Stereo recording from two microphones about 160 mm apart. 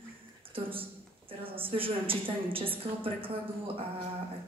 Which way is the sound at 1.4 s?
35° right (ahead or behind).